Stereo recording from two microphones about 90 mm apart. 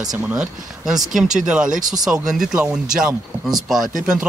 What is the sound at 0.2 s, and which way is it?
Speech, 15° right (ahead or behind).